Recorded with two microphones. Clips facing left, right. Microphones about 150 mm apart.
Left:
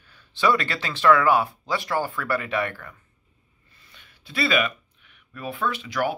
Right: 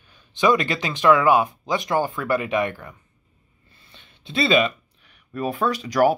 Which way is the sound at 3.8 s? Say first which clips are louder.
Right 3 dB; 25° right (ahead or behind).